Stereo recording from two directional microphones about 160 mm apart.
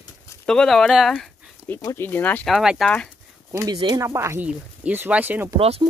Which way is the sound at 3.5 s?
25° right (ahead or behind).